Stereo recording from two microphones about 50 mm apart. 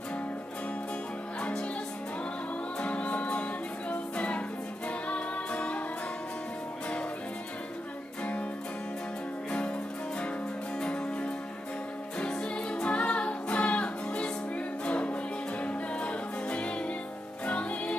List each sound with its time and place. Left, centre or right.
1.4 s music: centre
2.8 s music: left
8.2 s music: left
9.5 s music: left
10.8 s music: left